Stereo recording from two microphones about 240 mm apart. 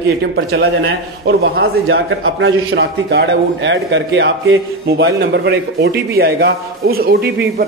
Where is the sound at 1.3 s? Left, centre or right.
Right.